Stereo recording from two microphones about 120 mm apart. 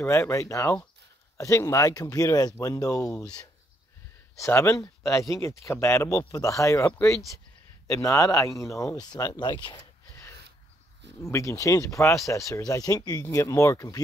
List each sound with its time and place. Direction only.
0.0 s speech: 25° left (ahead or behind)
3.2 s speech: 5° left (ahead or behind)
4.4 s speech: 25° left (ahead or behind)
11.2 s speech: 25° left (ahead or behind)